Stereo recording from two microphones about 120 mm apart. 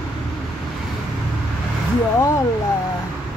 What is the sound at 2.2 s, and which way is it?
Speech, 25° left (ahead or behind).